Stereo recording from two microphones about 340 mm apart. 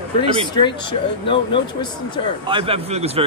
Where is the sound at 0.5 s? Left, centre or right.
Centre.